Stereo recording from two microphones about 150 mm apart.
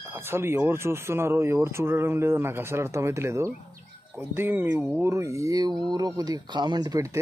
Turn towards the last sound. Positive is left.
turn(degrees=-25)  # may be behind; listen again after turning